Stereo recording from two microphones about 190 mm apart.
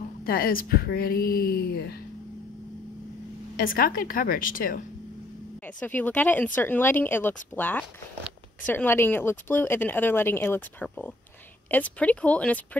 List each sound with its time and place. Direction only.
0.2 s a woman's voice: 50° left (ahead or behind)
3.5 s a woman's voice: 50° left (ahead or behind)
5.6 s a woman's voice: 10° left (ahead or behind)